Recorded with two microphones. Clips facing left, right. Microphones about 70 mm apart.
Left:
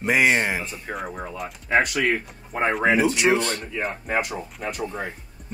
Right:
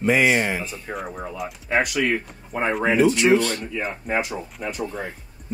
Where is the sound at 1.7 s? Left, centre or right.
Left.